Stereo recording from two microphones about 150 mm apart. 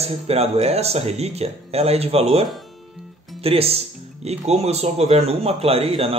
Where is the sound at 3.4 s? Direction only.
40° right (ahead or behind).